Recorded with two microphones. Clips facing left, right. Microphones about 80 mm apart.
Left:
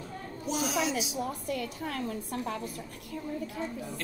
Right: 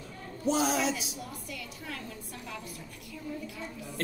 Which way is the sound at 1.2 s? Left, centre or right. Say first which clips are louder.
Left 9 dB; left.